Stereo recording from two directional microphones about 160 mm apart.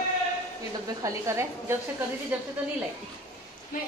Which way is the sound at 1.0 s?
15° right (ahead or behind).